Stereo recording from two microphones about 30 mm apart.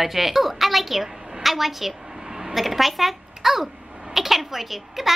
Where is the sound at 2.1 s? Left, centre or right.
Centre.